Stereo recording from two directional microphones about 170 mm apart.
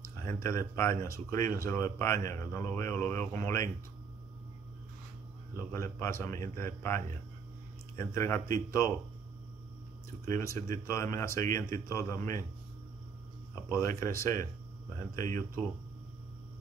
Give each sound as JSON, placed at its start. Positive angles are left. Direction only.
{"t": 0.0, "sound": "speech", "side_deg": 15}
{"t": 5.6, "sound": "speech", "side_deg": 15}
{"t": 10.2, "sound": "speech", "side_deg": 15}
{"t": 13.7, "sound": "speech", "side_deg": 15}